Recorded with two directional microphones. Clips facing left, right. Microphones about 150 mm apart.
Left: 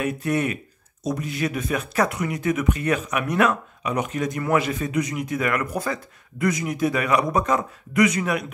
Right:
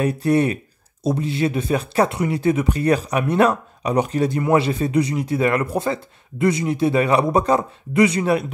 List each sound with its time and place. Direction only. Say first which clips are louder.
0.0 s speech: right 6 dB; 35° right (ahead or behind)